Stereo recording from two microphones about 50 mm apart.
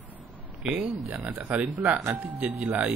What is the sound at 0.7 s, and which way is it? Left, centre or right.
Speech, right.